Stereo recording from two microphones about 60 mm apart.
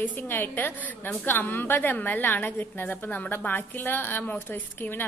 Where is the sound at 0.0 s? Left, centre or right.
Left.